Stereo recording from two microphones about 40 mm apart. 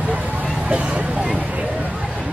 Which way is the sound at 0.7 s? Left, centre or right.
Right.